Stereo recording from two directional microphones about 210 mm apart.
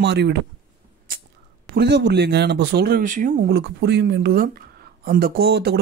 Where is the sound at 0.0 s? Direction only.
55° right (ahead or behind).